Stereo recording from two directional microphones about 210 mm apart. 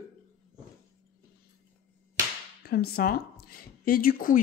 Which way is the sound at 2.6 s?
45° left (ahead or behind).